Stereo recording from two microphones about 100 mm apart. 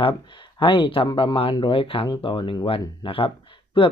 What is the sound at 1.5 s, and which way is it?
Speech, 60° left (ahead or behind).